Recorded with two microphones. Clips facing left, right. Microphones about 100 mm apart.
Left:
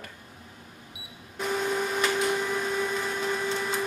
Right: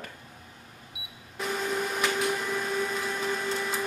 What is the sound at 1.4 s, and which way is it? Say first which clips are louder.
Printer: left 2 dB; centre (ahead or behind).